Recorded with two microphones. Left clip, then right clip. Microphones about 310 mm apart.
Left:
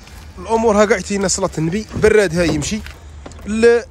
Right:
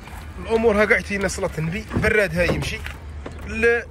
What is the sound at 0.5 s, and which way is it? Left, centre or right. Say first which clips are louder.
Speech: left 4 dB; centre.